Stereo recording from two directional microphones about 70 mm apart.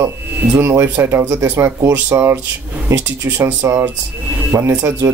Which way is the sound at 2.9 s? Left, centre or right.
Right.